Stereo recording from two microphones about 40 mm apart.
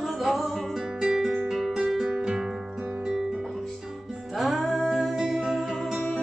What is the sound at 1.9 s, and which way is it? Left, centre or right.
Music, centre.